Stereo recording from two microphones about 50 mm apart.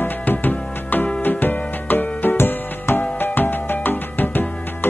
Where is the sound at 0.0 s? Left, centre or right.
Left.